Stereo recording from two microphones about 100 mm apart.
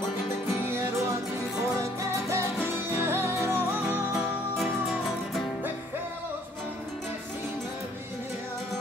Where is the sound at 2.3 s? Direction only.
25° right (ahead or behind).